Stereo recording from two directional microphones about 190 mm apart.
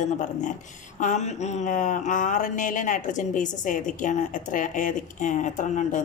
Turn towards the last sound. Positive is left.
turn(degrees=40)  # may be behind; listen again after turning